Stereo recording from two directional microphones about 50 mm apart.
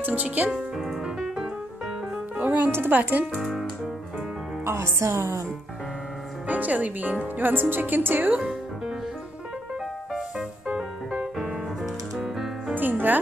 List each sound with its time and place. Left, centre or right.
0.0 s speech: right
0.5 s speech: centre
1.0 s keyboard: centre
2.3 s speech: right
4.6 s music: right
6.4 s speech: right
8.4 s music: centre
10.7 s music: centre
11.3 s music: centre
12.7 s music: right